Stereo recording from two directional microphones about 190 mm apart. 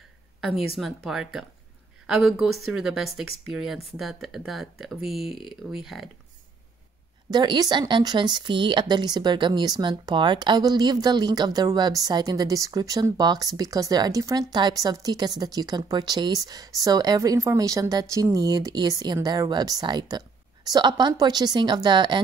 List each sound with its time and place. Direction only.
0.4 s speech: centre (ahead or behind)
7.2 s speech: 20° right (ahead or behind)